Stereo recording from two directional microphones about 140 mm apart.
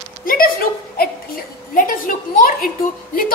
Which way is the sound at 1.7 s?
75° left (ahead or behind).